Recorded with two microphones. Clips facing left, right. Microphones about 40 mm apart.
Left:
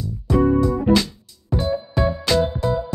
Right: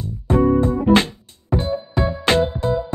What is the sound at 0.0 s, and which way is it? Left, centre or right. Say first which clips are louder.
Music: right 1 dB; right.